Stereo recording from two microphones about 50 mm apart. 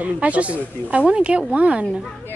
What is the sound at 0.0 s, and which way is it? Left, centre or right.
Speech, right.